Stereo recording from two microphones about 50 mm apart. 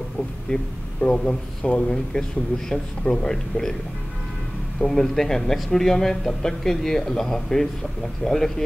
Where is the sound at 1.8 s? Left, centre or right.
Centre.